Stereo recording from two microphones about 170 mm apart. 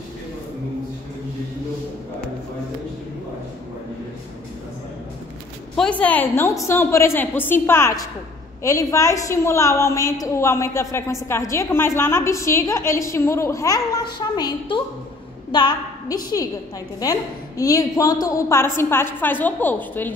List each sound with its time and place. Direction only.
5.8 s a woman's voice: 5° left (ahead or behind)